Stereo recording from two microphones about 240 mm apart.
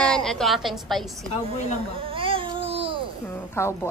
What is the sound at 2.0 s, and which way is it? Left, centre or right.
Babbling, right.